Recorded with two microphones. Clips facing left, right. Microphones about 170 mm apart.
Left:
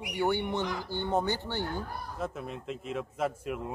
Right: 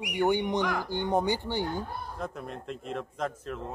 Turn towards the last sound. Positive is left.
turn(degrees=5)  # may be behind; listen again after turning